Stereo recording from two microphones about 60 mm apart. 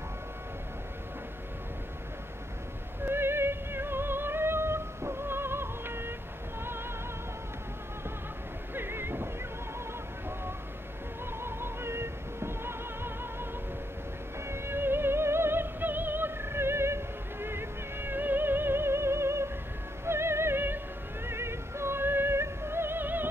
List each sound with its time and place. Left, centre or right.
3.1 s music: right
8.7 s music: right
11.4 s music: right
14.5 s music: right